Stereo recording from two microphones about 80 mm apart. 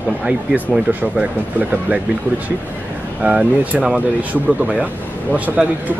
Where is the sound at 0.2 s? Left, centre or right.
Centre.